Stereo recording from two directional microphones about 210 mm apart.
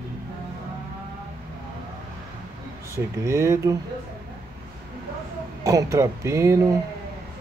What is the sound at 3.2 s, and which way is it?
Speech, 15° right (ahead or behind).